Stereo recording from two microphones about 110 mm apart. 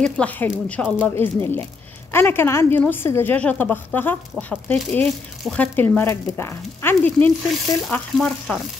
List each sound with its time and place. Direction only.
0.0 s speech: 15° left (ahead or behind)
5.0 s frying: 5° left (ahead or behind)
5.8 s speech: 20° left (ahead or behind)
7.9 s frying: 5° left (ahead or behind)